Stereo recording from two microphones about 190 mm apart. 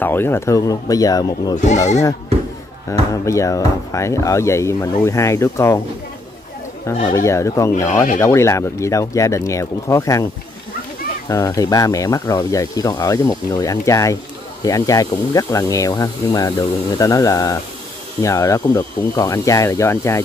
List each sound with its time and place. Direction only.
0.0 s speech: 10° left (ahead or behind)
2.9 s speech: 15° left (ahead or behind)
7.2 s speech: 15° left (ahead or behind)
11.2 s speech: 15° left (ahead or behind)